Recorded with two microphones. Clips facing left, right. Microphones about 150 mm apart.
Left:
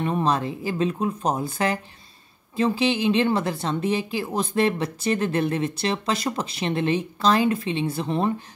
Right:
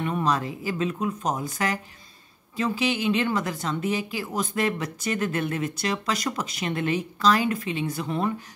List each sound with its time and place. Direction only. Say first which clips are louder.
0.0 s speech: left 2 dB; 30° left (ahead or behind)